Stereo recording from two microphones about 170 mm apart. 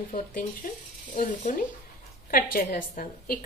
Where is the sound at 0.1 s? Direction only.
50° left (ahead or behind).